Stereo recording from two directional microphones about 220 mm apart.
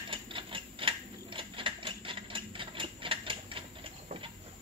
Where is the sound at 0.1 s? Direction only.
25° right (ahead or behind).